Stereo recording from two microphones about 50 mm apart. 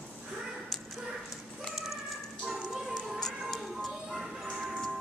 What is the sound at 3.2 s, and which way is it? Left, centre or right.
Music, centre.